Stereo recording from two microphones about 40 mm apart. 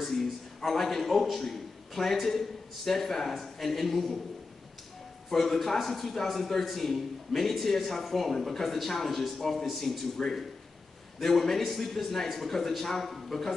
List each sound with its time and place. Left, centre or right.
0.0 s a sound: centre
2.2 s a man's voice: centre
5.3 s a man's voice: centre